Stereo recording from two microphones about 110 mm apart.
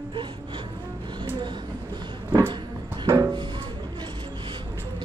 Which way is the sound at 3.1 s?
30° right (ahead or behind).